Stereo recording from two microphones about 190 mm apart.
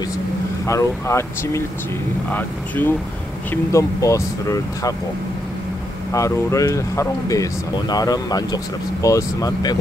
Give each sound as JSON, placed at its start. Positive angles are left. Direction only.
{"t": 0.7, "sound": "speech", "side_deg": 15}
{"t": 6.1, "sound": "speech", "side_deg": 15}